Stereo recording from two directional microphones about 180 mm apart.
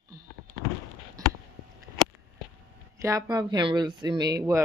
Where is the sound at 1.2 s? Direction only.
20° right (ahead or behind).